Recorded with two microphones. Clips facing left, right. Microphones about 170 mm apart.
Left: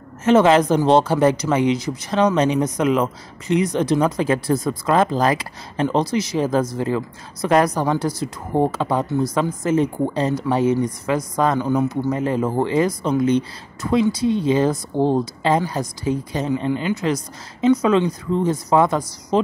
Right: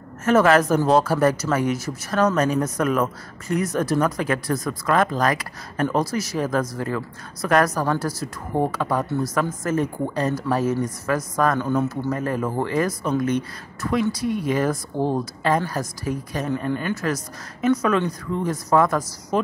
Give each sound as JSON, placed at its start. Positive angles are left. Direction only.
{"t": 0.2, "sound": "speech", "side_deg": 20}